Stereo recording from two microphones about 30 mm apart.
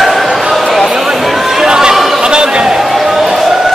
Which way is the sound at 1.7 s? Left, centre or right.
Right.